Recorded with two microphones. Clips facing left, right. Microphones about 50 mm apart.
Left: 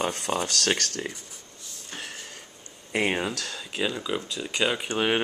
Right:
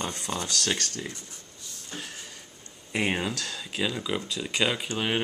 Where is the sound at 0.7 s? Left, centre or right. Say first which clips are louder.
Left 3 dB; left.